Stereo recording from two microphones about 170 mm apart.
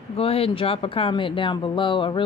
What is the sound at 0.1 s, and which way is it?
Speech, 35° left (ahead or behind).